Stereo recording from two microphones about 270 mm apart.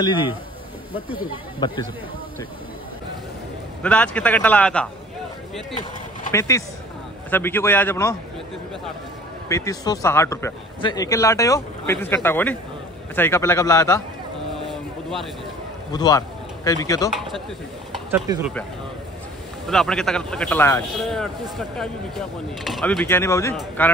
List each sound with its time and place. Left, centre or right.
1.6 s speech: centre
3.8 s speech: centre
6.3 s speech: centre
9.5 s speech: centre
15.9 s speech: centre
18.4 s speech: centre
19.7 s speech: centre